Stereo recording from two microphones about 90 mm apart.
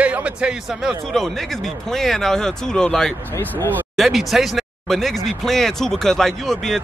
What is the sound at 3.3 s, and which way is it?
Speech, 20° left (ahead or behind).